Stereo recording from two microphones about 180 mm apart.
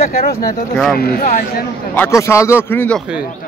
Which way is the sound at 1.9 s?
15° left (ahead or behind).